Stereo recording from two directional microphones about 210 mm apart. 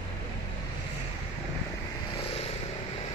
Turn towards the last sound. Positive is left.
turn(degrees=30)  # may be behind; listen again after turning